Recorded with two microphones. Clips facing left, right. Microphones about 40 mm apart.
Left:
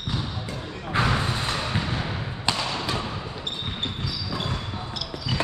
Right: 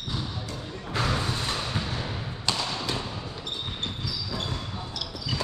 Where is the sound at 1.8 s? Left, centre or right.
Left.